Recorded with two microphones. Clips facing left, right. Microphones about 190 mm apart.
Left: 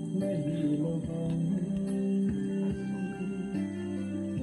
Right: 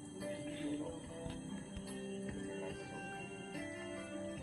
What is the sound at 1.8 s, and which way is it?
Music, 60° left (ahead or behind).